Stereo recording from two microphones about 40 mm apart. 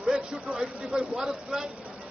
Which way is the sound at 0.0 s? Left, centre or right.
Centre.